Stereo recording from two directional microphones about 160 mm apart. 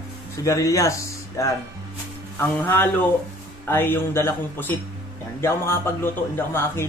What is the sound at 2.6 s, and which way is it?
Speech, 10° left (ahead or behind).